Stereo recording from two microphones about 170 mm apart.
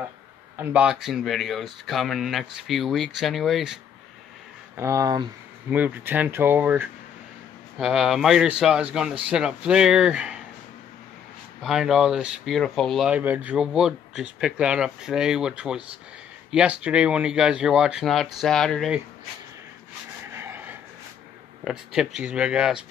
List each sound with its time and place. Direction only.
0.6 s speech: 5° right (ahead or behind)
4.7 s speech: 20° right (ahead or behind)
5.7 s speech: 10° right (ahead or behind)
11.6 s speech: centre (ahead or behind)
20.2 s a sound: 15° right (ahead or behind)
21.6 s speech: 5° right (ahead or behind)